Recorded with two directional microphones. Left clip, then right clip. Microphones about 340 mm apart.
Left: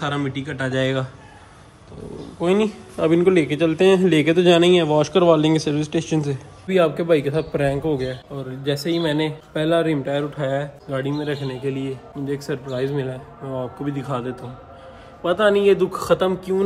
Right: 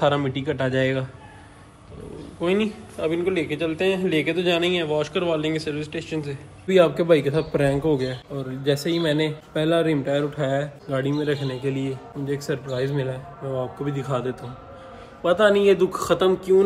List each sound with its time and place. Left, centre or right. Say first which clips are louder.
0.0 s a man's voice: right 4 dB; centre
2.4 s a man's voice: left 3 dB; centre
6.7 s a man's voice: even; centre